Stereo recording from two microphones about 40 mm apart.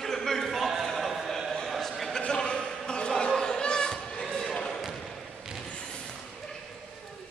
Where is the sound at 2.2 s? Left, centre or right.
Left; by 4.5 s centre.